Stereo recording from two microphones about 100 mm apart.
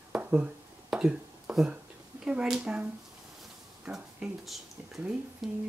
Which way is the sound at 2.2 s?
10° right (ahead or behind).